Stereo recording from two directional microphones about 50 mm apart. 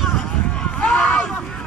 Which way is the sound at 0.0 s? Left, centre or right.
Centre.